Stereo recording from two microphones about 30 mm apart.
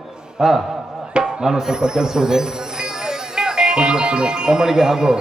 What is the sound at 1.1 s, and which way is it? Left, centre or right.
Speech, right.